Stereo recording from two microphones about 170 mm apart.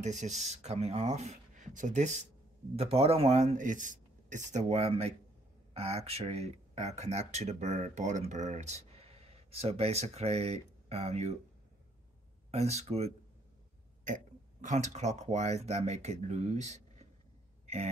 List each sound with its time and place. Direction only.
0.0 s a man's voice: 45° right (ahead or behind)
12.4 s a man's voice: 40° right (ahead or behind)